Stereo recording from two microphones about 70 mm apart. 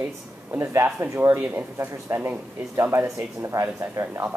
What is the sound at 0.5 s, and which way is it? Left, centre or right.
Speech, right.